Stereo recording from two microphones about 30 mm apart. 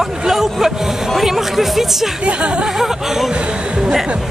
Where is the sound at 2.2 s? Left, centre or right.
Right.